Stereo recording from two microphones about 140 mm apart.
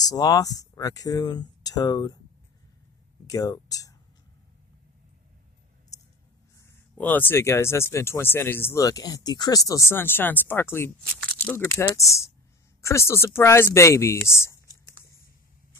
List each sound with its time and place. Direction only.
0.0 s speech: 25° left (ahead or behind)
3.3 s speech: 25° left (ahead or behind)
7.0 s speech: 10° left (ahead or behind)
12.8 s speech: 20° left (ahead or behind)
14.2 s a sound: 20° left (ahead or behind)